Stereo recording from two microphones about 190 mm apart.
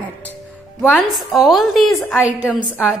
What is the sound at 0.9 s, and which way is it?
A woman's voice, centre (ahead or behind).